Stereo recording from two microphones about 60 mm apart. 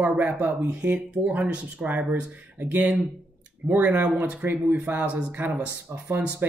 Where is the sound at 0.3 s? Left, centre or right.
Right.